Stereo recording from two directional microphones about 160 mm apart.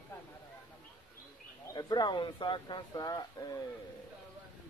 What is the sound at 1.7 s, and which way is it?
Speech, 25° left (ahead or behind).